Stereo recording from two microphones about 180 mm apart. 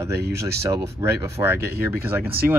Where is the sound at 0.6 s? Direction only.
15° right (ahead or behind).